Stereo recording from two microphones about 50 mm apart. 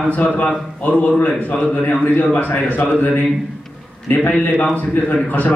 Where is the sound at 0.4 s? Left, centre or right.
Left.